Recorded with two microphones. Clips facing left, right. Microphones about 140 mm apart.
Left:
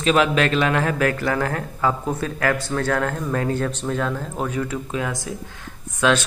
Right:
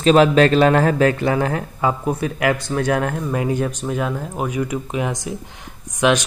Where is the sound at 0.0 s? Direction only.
35° right (ahead or behind).